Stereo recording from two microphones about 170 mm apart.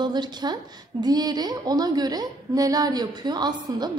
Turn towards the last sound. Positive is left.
turn(degrees=-25)  # may be behind; listen again after turning